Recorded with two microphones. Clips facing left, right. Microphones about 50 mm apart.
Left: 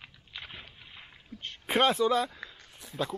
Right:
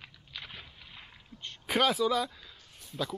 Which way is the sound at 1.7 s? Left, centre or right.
Left.